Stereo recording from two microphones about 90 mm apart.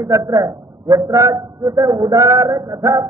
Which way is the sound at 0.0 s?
35° right (ahead or behind).